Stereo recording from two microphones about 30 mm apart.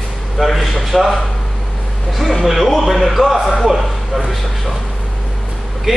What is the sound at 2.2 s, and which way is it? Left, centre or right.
A man's voice, centre.